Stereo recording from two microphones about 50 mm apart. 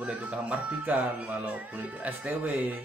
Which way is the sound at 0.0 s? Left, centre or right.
Right.